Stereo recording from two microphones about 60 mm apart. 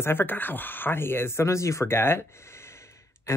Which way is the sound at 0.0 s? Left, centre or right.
Left.